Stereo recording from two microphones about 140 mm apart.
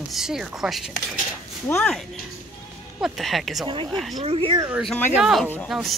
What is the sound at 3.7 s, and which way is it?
Speech, 35° right (ahead or behind).